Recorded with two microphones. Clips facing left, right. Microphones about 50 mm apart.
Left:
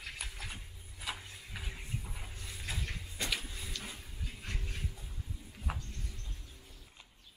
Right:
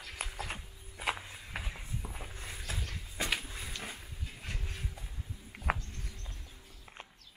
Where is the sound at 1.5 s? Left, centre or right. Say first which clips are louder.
Right 5 dB; right.